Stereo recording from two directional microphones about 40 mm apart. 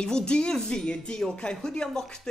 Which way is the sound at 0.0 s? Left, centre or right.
Left.